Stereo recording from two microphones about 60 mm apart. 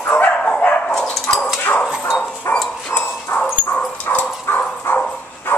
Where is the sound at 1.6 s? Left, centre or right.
Left.